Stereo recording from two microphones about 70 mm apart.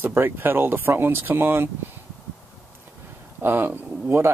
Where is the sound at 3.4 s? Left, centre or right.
Right.